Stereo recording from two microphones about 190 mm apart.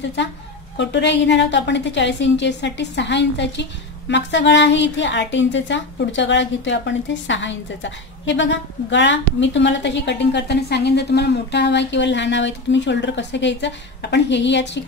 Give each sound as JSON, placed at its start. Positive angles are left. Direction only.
{"t": 0.7, "sound": "a woman's voice", "side_deg": 70}